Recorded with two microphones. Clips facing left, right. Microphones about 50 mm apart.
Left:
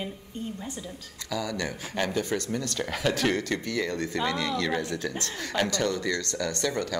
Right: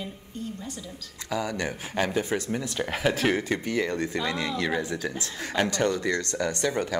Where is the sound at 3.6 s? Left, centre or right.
Right.